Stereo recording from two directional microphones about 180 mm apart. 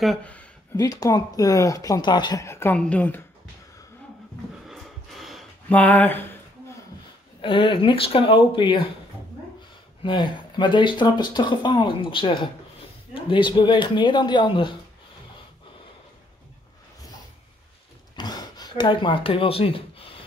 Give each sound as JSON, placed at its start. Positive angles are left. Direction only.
{"t": 0.0, "sound": "speech", "side_deg": 5}
{"t": 0.7, "sound": "speech", "side_deg": 20}
{"t": 4.6, "sound": "a sound", "side_deg": 0}
{"t": 7.4, "sound": "speech", "side_deg": 30}
{"t": 10.0, "sound": "speech", "side_deg": 25}
{"t": 18.1, "sound": "a sound", "side_deg": 25}